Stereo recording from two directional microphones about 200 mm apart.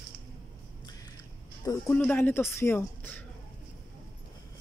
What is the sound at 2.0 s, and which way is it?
Speech, 10° left (ahead or behind).